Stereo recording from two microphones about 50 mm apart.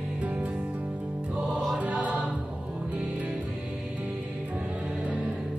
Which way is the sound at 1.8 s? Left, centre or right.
Right.